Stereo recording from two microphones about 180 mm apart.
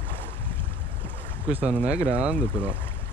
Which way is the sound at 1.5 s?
5° right (ahead or behind).